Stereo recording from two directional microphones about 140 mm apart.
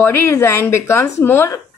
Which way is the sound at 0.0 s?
15° left (ahead or behind).